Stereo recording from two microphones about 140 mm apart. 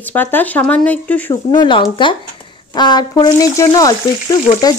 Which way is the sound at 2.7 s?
30° left (ahead or behind).